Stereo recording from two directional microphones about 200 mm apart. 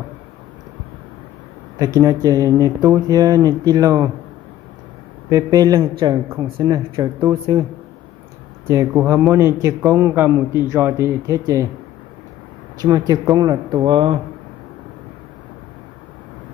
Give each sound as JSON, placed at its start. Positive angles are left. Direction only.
{"t": 2.0, "sound": "speech", "side_deg": -15}
{"t": 5.3, "sound": "speech", "side_deg": -20}
{"t": 8.6, "sound": "speech", "side_deg": -15}
{"t": 12.8, "sound": "speech", "side_deg": -20}